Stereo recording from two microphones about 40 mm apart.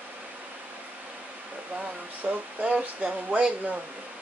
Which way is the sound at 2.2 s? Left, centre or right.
Right.